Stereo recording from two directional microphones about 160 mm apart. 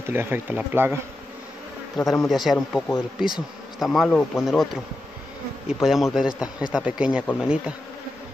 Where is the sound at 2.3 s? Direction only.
Centre (ahead or behind).